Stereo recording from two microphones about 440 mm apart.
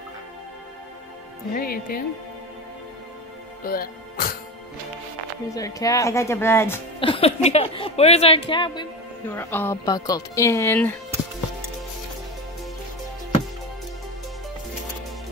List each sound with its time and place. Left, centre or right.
1.5 s speech: centre
3.6 s speech: centre
5.5 s speech: centre